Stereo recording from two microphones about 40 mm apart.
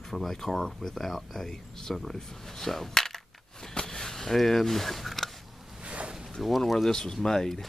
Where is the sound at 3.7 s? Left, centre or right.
Centre.